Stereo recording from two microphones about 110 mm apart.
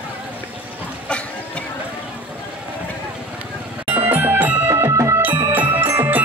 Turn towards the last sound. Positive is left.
turn(degrees=-25)  # may be behind; listen again after turning